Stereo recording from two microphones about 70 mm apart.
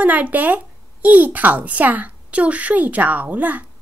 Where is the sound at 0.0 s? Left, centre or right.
Right.